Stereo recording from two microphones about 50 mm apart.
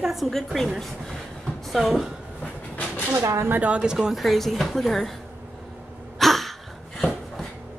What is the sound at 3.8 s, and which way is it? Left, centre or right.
Speech, centre.